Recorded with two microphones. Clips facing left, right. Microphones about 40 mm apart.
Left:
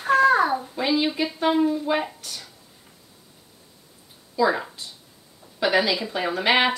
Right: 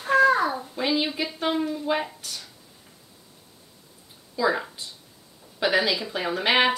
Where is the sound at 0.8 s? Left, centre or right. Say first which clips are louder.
Left 2 dB; centre.